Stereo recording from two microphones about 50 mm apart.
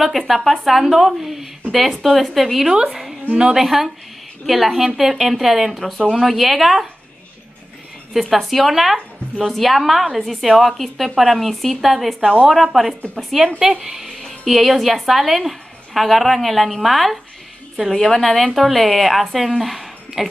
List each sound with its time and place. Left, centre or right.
0.3 s a woman's voice: centre
2.7 s a woman's voice: centre
3.3 s a woman's voice: centre
8.1 s a woman's voice: centre